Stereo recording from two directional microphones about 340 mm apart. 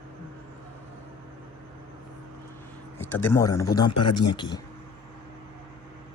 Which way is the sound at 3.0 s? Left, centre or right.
Centre.